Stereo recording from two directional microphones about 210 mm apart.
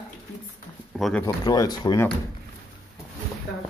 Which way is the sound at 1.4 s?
20° left (ahead or behind).